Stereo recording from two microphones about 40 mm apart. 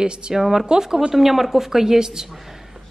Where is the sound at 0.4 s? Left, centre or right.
Centre.